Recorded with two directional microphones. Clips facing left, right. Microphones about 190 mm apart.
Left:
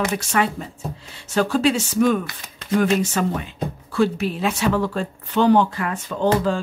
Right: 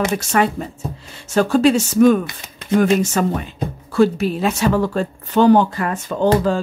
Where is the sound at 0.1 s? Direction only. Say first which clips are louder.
Right 4 dB; 45° right (ahead or behind).